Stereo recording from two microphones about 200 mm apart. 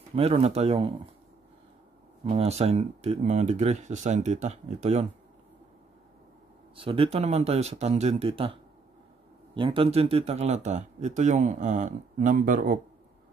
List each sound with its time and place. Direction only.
0.1 s speech: 30° right (ahead or behind)
2.2 s speech: 30° right (ahead or behind)
6.7 s speech: 25° right (ahead or behind); by 12.8 s 40° right (ahead or behind)